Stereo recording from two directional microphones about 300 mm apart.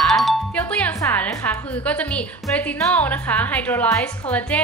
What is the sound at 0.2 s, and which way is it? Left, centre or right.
A woman's voice, centre.